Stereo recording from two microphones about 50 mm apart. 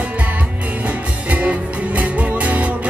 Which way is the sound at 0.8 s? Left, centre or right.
Right.